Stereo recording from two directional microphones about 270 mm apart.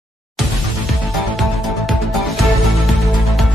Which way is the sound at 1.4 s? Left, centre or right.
Centre.